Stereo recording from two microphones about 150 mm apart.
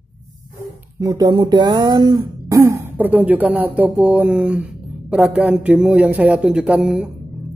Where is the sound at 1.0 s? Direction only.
25° right (ahead or behind).